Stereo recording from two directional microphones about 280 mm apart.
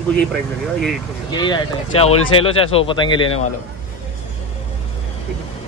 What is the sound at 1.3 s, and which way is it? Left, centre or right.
Speech, centre.